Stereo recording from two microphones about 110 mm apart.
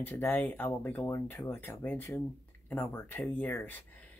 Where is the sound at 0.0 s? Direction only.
15° left (ahead or behind).